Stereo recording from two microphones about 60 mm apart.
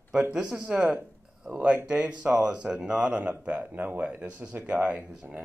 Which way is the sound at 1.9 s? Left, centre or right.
Centre.